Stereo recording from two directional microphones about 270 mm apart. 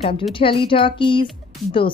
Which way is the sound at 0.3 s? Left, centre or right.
Centre.